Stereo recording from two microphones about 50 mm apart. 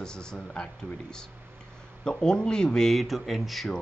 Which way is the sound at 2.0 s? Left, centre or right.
Centre.